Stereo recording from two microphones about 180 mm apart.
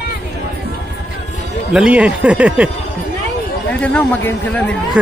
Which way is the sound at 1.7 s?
5° right (ahead or behind).